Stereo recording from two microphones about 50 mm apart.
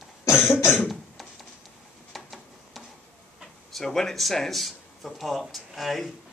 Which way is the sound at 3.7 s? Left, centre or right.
Centre.